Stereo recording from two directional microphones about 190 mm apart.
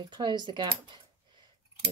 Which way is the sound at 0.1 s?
25° right (ahead or behind).